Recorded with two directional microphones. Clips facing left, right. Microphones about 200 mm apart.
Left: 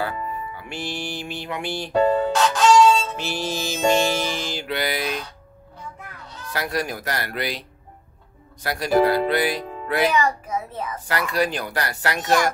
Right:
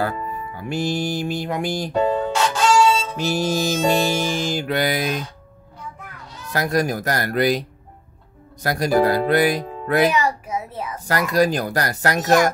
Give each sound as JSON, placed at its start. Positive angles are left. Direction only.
{"t": 0.6, "sound": "speech", "side_deg": -40}
{"t": 2.3, "sound": "music", "side_deg": -5}
{"t": 3.2, "sound": "music", "side_deg": -45}
{"t": 6.5, "sound": "speech", "side_deg": -45}
{"t": 8.6, "sound": "speech", "side_deg": -45}
{"t": 10.1, "sound": "a child's voice", "side_deg": -10}
{"t": 11.1, "sound": "speech", "side_deg": -40}